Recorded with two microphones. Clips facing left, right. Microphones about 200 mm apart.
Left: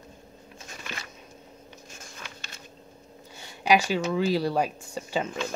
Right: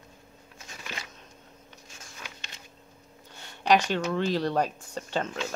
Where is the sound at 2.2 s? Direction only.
15° right (ahead or behind).